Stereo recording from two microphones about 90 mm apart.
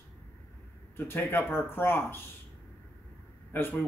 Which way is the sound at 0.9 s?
25° left (ahead or behind).